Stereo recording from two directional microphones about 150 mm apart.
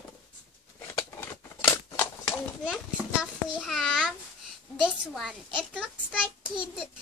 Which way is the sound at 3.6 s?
Centre (ahead or behind).